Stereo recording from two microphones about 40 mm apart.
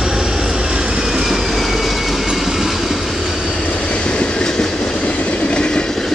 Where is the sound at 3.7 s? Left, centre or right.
Left; by 4.9 s centre.